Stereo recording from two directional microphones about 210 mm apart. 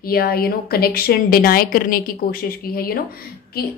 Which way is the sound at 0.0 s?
45° left (ahead or behind).